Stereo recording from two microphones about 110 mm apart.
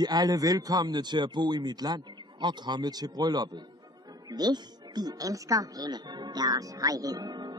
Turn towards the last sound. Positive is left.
turn(degrees=-40)  # may be behind; listen again after turning